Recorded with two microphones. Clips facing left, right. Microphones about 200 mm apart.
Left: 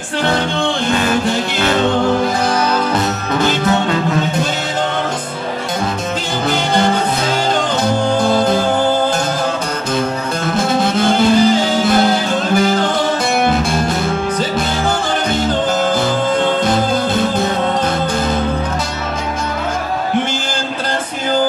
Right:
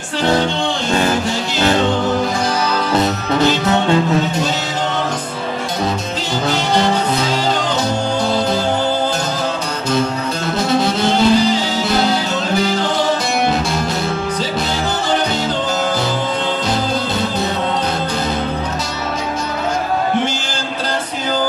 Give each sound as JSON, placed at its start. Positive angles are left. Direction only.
{"t": 8.2, "sound": "music", "side_deg": 50}
{"t": 10.5, "sound": "music", "side_deg": 50}